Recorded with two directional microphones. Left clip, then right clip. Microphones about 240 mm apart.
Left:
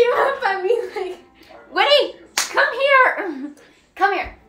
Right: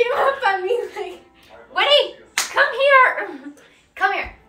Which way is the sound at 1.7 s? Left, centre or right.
Left.